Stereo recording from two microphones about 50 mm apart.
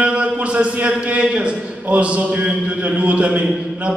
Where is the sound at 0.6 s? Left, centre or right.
Right.